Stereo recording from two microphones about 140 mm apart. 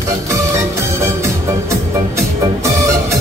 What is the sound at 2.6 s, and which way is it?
Music, 20° right (ahead or behind).